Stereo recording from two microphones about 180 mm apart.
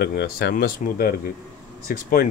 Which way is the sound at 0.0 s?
65° left (ahead or behind).